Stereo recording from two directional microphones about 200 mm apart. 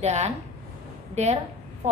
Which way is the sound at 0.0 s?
35° right (ahead or behind).